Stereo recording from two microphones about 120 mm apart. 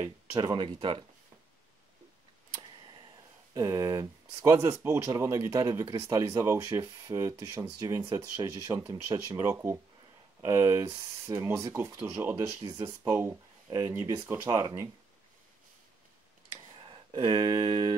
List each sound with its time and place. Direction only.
0.4 s speech: 35° right (ahead or behind)
3.5 s speech: 25° right (ahead or behind)
14.5 s speech: 30° right (ahead or behind)
16.7 s a sound: 45° right (ahead or behind)